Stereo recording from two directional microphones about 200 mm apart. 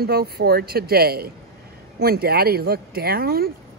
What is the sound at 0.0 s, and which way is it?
Speech, 50° right (ahead or behind).